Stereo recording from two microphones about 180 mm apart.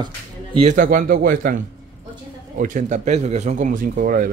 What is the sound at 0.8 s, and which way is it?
Speech, 55° right (ahead or behind).